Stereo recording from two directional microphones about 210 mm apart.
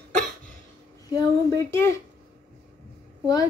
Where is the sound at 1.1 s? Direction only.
15° left (ahead or behind).